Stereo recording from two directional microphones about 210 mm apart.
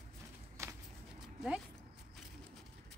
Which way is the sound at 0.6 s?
15° right (ahead or behind).